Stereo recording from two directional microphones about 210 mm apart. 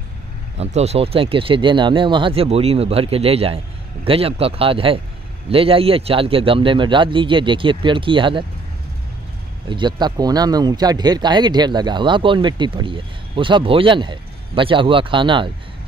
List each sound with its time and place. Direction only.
0.6 s speech: 30° right (ahead or behind)
9.7 s speech: 20° right (ahead or behind)